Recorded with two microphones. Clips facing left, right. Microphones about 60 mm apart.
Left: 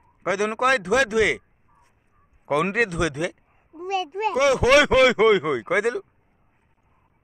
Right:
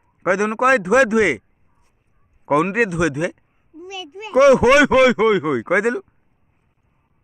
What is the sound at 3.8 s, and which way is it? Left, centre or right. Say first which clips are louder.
Speech: left 7 dB; left.